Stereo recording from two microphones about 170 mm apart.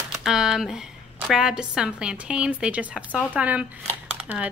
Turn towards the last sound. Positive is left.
turn(degrees=-5)  # may be behind; listen again after turning